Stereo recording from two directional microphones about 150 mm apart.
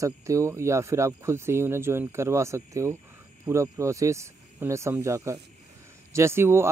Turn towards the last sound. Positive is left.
turn(degrees=-15)  # may be behind; listen again after turning